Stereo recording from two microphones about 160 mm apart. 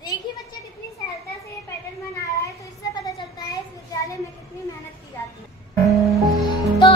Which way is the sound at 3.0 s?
20° left (ahead or behind).